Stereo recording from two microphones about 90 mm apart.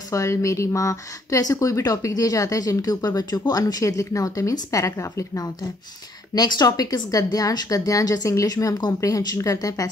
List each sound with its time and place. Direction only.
0.1 s speech: 35° left (ahead or behind)
6.3 s speech: 45° left (ahead or behind)